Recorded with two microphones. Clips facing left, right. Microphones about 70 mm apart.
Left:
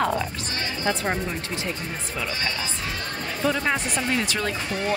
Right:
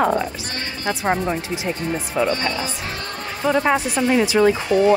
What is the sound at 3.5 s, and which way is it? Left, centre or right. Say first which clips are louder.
Speech: right 6 dB; centre.